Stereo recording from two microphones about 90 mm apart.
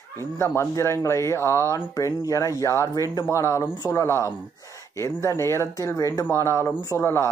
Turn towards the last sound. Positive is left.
turn(degrees=30)  # may be behind; listen again after turning